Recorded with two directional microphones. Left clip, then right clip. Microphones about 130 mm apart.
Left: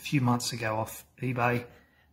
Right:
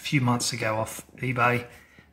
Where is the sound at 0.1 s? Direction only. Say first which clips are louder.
Right 3 dB; centre (ahead or behind).